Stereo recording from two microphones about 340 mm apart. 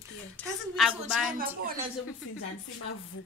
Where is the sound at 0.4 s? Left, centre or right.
Centre.